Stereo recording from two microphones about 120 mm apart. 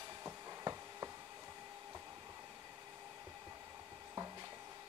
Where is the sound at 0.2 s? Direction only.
25° right (ahead or behind).